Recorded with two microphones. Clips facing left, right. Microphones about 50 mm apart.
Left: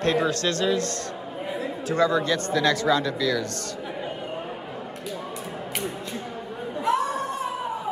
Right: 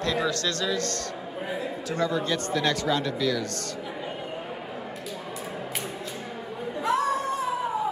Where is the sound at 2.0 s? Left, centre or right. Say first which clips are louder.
Left 4 dB; left.